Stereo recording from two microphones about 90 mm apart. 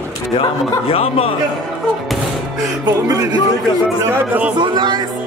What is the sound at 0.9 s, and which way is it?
Speech, 90° left.